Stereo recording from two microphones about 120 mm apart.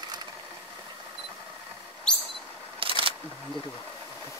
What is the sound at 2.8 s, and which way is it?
Single-lens reflex camera, 50° right (ahead or behind).